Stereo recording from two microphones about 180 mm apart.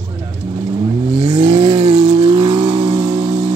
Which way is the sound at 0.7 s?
30° right (ahead or behind).